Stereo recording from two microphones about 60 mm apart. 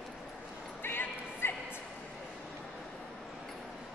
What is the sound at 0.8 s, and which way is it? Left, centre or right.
Bow-wow, left.